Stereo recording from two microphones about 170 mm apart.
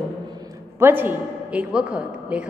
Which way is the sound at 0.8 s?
10° right (ahead or behind).